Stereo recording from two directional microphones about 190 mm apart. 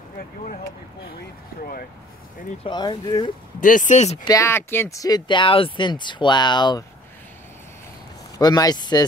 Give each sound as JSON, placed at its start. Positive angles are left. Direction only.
{"t": 1.6, "sound": "speech", "side_deg": 50}
{"t": 2.6, "sound": "speech", "side_deg": 25}
{"t": 3.6, "sound": "speech", "side_deg": 45}
{"t": 4.2, "sound": "speech", "side_deg": 15}
{"t": 8.4, "sound": "speech", "side_deg": 20}